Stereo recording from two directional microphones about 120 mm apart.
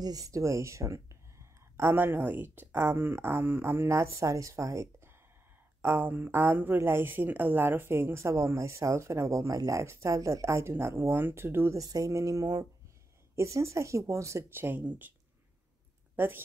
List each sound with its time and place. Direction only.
0.0 s a woman's voice: 30° right (ahead or behind); by 15.1 s 15° right (ahead or behind)
16.2 s a woman's voice: 15° right (ahead or behind)